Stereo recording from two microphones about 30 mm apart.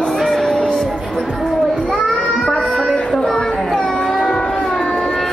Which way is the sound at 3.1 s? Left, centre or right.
Left.